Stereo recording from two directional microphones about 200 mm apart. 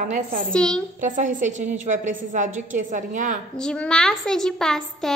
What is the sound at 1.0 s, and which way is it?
A woman's voice, 40° right (ahead or behind).